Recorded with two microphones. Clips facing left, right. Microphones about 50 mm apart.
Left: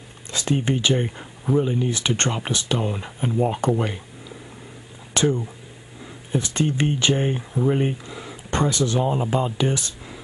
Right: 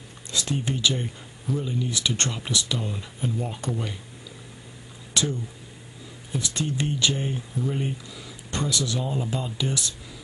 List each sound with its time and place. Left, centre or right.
0.3 s speech: left
5.1 s a sound: left
6.3 s speech: left